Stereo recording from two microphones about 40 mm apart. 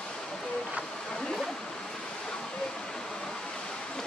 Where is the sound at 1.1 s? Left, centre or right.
Centre.